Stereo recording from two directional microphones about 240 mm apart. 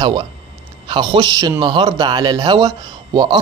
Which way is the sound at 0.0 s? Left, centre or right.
Centre.